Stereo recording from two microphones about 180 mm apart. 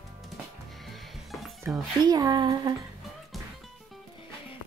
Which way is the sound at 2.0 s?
20° right (ahead or behind).